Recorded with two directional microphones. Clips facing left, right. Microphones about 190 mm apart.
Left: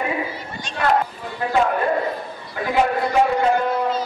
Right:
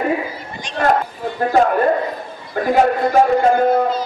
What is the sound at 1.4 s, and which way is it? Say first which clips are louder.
A man's voice: right 5 dB; 45° right (ahead or behind).